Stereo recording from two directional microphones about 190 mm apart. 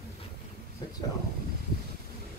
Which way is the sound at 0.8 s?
20° left (ahead or behind).